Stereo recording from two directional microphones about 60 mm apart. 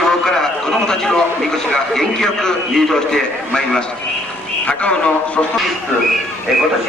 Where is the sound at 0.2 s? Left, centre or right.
Centre.